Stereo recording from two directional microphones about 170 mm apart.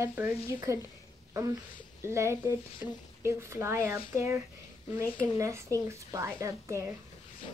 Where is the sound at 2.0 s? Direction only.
15° right (ahead or behind).